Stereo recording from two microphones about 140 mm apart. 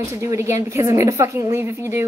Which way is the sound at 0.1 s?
20° right (ahead or behind).